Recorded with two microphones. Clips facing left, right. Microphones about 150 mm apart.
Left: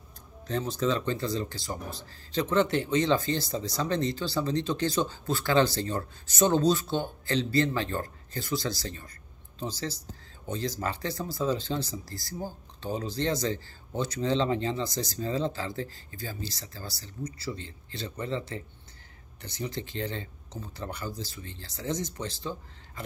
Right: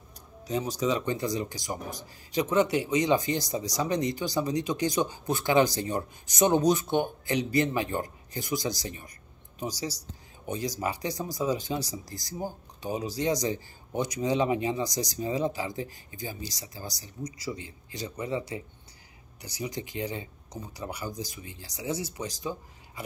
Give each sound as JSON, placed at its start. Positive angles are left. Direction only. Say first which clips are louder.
{"t": 0.5, "sound": "speech", "louder": "even", "side_deg": -10}